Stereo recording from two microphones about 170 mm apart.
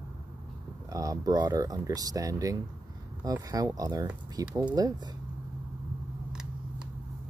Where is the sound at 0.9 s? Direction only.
20° right (ahead or behind).